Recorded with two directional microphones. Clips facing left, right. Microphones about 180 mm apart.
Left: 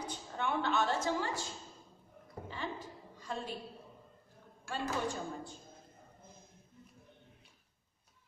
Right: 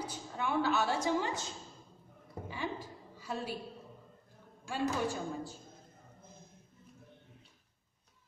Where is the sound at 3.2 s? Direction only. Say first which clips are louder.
Right 2 dB; 5° right (ahead or behind).